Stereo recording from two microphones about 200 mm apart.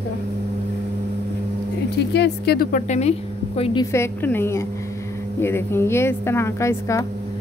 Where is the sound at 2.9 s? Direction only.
30° left (ahead or behind).